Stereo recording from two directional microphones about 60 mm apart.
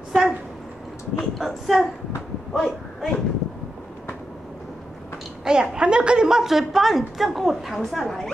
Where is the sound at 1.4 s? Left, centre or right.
Centre.